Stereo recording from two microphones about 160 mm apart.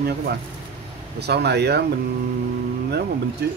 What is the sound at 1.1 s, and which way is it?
Speech, 90° right.